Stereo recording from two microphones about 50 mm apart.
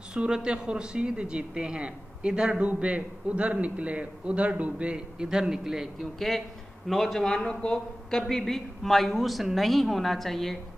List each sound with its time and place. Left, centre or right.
0.1 s speech: centre
6.1 s a woman's voice: centre
7.2 s a woman's voice: centre